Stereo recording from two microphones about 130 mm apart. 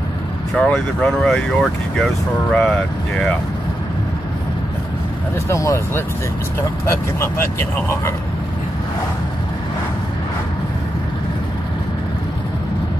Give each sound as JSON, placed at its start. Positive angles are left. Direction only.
{"t": 0.6, "sound": "speech", "side_deg": 5}
{"t": 5.5, "sound": "speech", "side_deg": 20}